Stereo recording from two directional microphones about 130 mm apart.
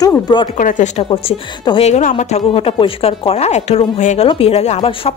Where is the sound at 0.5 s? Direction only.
90° left.